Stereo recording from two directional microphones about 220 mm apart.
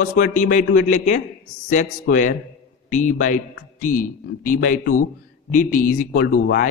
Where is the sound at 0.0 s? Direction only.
35° left (ahead or behind).